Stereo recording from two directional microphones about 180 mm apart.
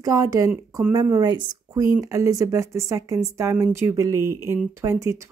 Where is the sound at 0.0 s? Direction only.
20° right (ahead or behind).